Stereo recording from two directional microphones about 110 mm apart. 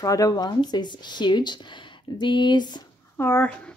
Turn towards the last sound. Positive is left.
turn(degrees=20)  # may be behind; listen again after turning